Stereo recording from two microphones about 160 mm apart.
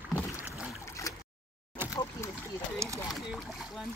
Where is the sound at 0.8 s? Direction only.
20° left (ahead or behind).